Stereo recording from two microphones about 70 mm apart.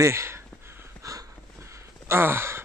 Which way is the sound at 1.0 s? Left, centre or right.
Right.